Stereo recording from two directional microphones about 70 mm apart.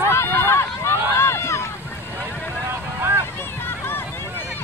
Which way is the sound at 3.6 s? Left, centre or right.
Left.